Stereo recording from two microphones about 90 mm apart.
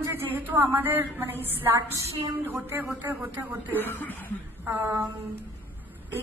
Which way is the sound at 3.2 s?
20° right (ahead or behind).